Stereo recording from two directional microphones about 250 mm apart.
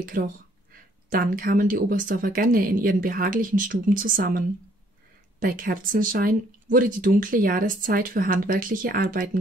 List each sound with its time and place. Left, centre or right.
0.0 s speech: right